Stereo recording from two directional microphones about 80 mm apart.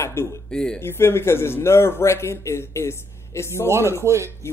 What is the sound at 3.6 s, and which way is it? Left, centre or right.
Speech, right.